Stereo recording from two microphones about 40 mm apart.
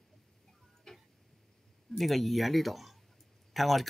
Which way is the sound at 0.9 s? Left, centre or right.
Centre.